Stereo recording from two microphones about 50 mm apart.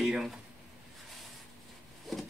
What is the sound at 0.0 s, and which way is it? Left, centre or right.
Speech, centre.